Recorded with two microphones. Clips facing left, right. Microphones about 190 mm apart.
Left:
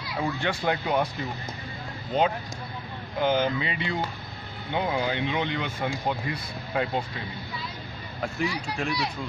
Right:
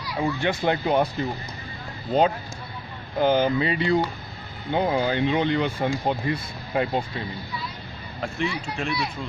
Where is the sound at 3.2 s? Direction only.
35° right (ahead or behind).